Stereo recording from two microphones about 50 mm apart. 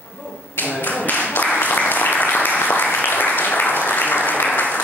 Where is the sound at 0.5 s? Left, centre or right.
Left.